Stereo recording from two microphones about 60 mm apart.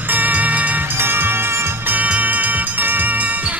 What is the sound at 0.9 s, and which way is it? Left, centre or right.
Music, right.